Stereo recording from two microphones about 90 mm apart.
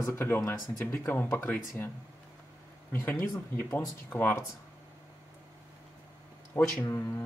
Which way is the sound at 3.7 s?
20° left (ahead or behind).